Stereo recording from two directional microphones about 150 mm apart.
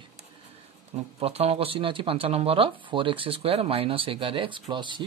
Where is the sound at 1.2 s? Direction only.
40° right (ahead or behind).